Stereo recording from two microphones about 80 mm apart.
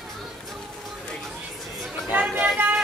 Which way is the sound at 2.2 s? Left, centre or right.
Centre.